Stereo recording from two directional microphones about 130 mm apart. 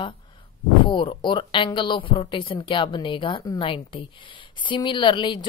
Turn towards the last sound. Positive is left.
turn(degrees=35)  # may be behind; listen again after turning